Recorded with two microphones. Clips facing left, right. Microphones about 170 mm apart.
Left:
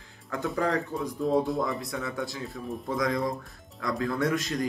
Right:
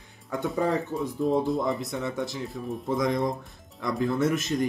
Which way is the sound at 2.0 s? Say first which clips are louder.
Right 3 dB; 20° right (ahead or behind).